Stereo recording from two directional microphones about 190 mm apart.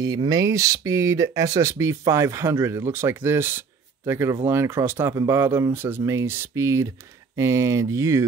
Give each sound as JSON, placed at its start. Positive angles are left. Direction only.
{"t": 0.0, "sound": "speech", "side_deg": -20}